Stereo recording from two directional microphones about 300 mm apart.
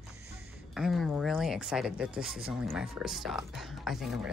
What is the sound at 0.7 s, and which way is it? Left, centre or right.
Speech, centre.